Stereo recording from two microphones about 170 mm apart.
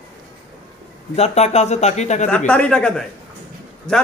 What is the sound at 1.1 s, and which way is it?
A man's voice, 40° left (ahead or behind).